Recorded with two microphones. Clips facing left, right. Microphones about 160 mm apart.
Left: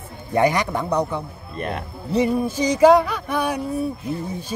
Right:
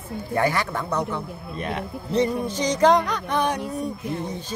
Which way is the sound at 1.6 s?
Centre (ahead or behind).